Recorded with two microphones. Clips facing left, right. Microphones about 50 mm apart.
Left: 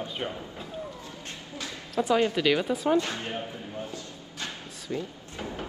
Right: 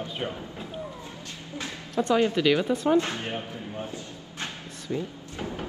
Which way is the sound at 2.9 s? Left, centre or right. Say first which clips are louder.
Right 2 dB; right.